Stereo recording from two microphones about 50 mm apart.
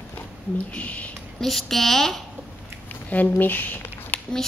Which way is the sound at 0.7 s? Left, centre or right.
Left.